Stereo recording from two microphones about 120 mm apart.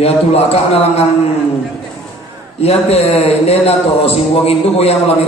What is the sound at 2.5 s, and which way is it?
A man's voice, 60° left (ahead or behind).